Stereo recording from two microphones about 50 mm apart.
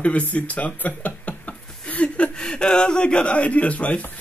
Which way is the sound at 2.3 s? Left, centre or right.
Centre.